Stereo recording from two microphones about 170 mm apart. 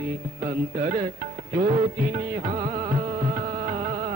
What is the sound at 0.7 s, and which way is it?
Music, 35° right (ahead or behind).